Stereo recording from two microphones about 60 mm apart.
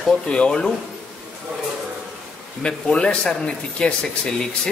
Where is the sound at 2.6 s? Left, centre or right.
Centre.